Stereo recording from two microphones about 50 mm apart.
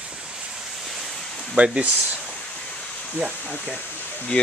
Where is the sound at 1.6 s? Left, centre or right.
Right.